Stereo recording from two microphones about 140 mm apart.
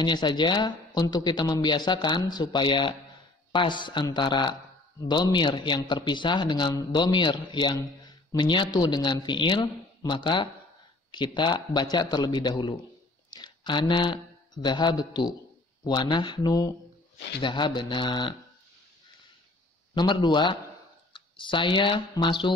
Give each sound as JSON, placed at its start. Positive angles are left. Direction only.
{"t": 0.0, "sound": "speech", "side_deg": 30}
{"t": 19.9, "sound": "speech", "side_deg": 30}